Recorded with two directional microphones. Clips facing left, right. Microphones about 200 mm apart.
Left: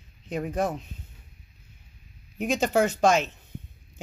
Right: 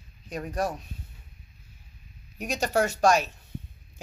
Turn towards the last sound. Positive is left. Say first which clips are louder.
# left 1 dB
turn(degrees=20)  # may be behind; listen again after turning